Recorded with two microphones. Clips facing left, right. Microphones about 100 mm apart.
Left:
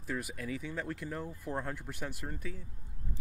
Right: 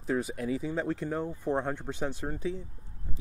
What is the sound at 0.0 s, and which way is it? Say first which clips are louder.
A woman's voice: right 8 dB; 30° right (ahead or behind).